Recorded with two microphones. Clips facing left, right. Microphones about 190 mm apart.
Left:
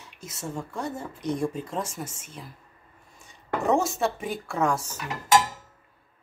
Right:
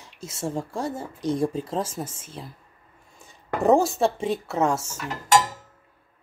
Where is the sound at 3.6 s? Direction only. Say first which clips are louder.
Right 5 dB; 35° right (ahead or behind).